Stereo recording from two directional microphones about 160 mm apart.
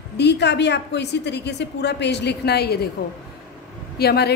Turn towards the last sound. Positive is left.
turn(degrees=85)